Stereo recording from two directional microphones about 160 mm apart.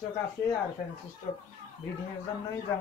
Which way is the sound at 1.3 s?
30° left (ahead or behind).